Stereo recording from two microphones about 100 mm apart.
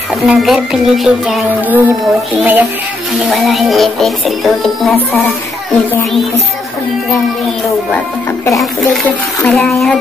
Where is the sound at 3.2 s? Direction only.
Centre (ahead or behind).